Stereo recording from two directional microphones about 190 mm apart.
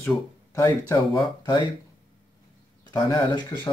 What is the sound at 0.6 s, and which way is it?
Speech, 20° left (ahead or behind).